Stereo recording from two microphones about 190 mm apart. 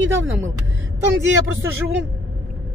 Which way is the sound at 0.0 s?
80° right.